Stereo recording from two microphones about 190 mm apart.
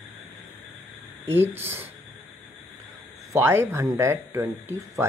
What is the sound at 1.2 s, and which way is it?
Speech, 10° right (ahead or behind).